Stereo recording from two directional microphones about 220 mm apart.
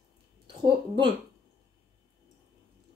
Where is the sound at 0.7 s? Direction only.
20° right (ahead or behind).